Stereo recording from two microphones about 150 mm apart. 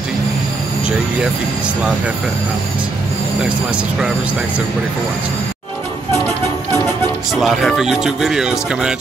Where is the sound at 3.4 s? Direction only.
10° right (ahead or behind).